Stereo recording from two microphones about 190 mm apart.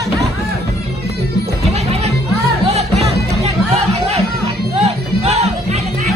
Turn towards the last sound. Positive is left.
turn(degrees=-35)  # may be behind; listen again after turning